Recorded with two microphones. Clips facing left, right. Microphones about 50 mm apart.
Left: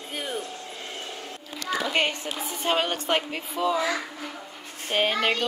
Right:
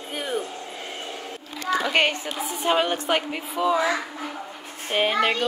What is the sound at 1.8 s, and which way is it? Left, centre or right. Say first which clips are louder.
Speech: right 3 dB; right.